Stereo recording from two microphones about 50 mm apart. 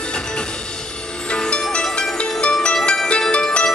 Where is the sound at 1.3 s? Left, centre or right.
Centre.